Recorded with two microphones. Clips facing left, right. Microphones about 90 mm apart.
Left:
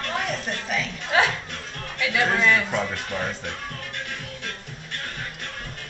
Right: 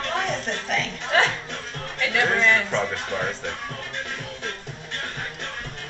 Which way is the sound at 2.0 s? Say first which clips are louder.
Even; 5° left (ahead or behind).